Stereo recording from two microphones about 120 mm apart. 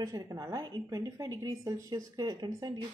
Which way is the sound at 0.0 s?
30° right (ahead or behind).